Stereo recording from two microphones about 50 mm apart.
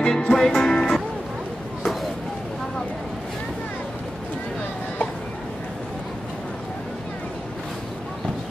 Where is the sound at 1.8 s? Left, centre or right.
Centre.